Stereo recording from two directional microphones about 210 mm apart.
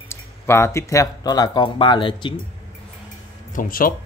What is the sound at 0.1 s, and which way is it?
Speech, 10° left (ahead or behind).